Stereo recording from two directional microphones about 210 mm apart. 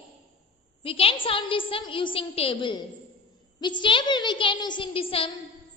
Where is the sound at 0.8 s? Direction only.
25° left (ahead or behind).